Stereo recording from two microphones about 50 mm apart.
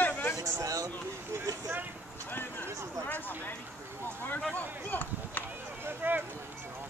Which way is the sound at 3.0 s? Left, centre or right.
Left.